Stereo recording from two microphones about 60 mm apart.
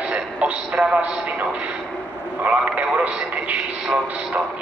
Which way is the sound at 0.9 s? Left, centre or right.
Right.